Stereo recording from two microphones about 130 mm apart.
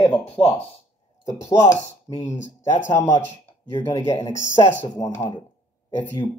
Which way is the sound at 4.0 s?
25° left (ahead or behind).